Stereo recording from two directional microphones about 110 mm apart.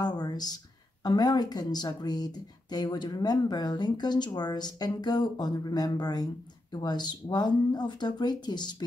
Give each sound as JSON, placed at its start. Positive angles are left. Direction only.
{"t": 0.0, "sound": "speech", "side_deg": 40}